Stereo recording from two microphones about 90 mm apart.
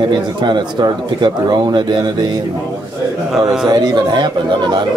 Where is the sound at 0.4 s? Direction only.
55° right (ahead or behind).